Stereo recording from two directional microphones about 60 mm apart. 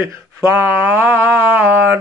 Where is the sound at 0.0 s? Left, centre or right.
Right.